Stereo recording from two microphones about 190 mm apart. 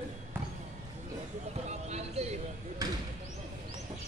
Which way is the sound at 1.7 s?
35° right (ahead or behind).